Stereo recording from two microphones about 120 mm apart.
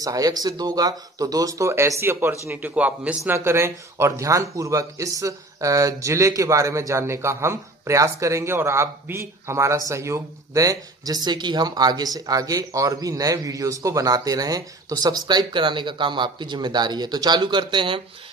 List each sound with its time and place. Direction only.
0.0 s a man's voice: 30° right (ahead or behind)